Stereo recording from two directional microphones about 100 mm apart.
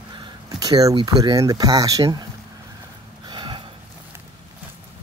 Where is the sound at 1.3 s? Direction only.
40° right (ahead or behind).